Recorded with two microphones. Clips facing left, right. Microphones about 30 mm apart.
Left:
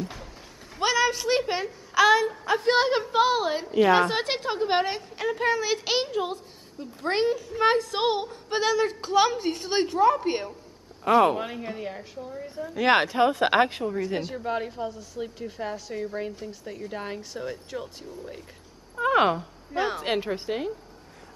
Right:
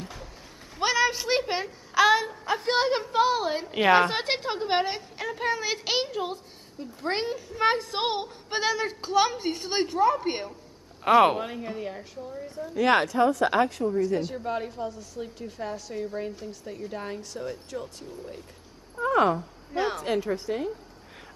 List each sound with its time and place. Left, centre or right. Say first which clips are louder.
0.7 s a sound: left 1 dB; centre
1.5 s a woman's voice: left 1 dB; centre
3.8 s a woman's voice: even; right
4.1 s a woman's voice: left 1 dB; centre
11.3 s a woman's voice: even; centre
12.3 s a woman's voice: left 1 dB; left
13.8 s speech: right 3 dB; left
14.2 s a woman's voice: left 1 dB; centre
18.9 s speech: left 1 dB; left
19.7 s a woman's voice: left 1 dB; centre
20.0 s a woman's voice: even; left